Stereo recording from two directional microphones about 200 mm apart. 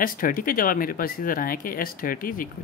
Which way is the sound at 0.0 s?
45° left (ahead or behind).